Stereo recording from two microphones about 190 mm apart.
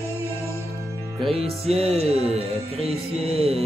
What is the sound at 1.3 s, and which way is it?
Music, 30° right (ahead or behind).